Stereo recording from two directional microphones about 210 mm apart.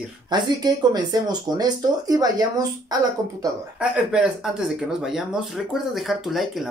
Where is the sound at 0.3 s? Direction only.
20° right (ahead or behind).